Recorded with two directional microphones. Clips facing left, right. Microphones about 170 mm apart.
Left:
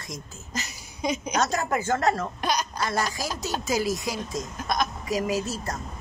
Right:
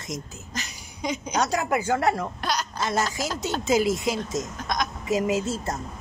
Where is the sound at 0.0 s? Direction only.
20° right (ahead or behind).